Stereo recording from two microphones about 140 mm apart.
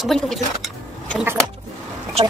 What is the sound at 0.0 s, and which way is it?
Speech, centre (ahead or behind).